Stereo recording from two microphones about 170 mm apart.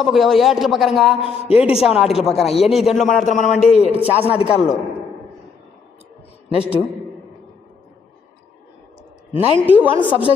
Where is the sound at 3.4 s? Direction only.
Centre (ahead or behind).